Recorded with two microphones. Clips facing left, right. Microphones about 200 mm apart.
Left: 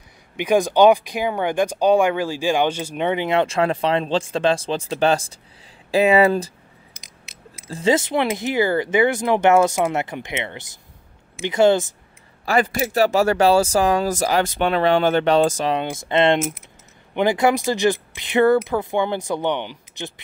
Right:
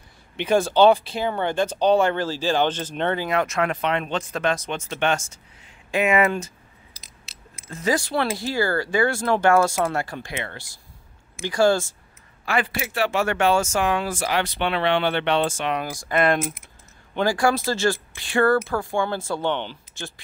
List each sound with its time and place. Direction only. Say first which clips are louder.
0.4 s speech: left 2 dB; 15° left (ahead or behind)
3.3 s speech: left 4 dB; 30° left (ahead or behind)
7.6 s speech: left 5 dB; 30° left (ahead or behind)
12.4 s speech: left 5 dB; 40° left (ahead or behind); by 20.1 s 15° left (ahead or behind)